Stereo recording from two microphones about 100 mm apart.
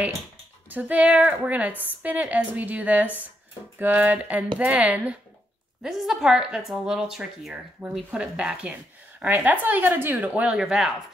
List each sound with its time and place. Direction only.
0.7 s a woman's voice: 15° right (ahead or behind)
5.8 s a woman's voice: centre (ahead or behind)